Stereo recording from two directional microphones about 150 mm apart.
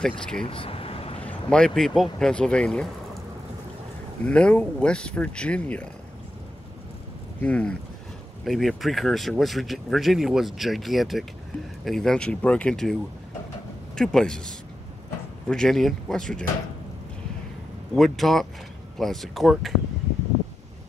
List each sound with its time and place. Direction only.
0.2 s speech: 5° left (ahead or behind)
0.5 s vehicle: 35° left (ahead or behind)
1.2 s speech: 5° left (ahead or behind)
4.3 s speech: 5° left (ahead or behind)
7.4 s speech: 10° left (ahead or behind)
13.9 s speech: 5° left (ahead or behind)
17.9 s speech: centre (ahead or behind)